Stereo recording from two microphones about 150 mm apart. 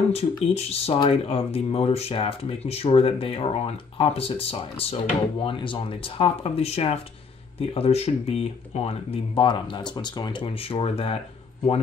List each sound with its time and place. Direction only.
0.1 s speech: 45° left (ahead or behind)